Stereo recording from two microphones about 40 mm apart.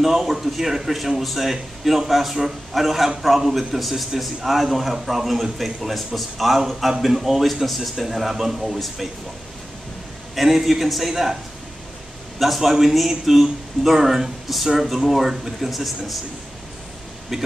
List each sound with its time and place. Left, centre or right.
0.0 s a man's voice: centre
10.3 s a man's voice: centre
12.4 s a man's voice: centre
17.3 s speech: centre